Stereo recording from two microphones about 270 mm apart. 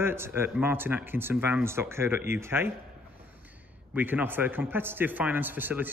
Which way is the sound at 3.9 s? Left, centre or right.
Centre.